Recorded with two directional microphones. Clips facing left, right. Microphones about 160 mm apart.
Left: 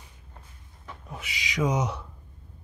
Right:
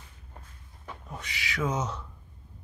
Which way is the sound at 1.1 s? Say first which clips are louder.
Left 3 dB; 10° left (ahead or behind).